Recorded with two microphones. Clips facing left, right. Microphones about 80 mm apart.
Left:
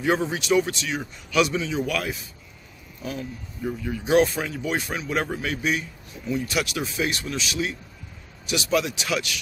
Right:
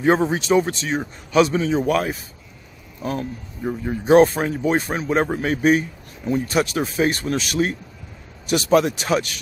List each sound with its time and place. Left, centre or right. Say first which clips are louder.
0.0 s speech: right 6 dB; right